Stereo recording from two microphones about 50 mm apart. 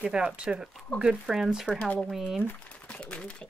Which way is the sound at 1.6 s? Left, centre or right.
Centre.